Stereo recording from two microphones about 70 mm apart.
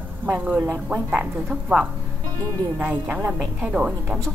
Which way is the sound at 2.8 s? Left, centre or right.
Right.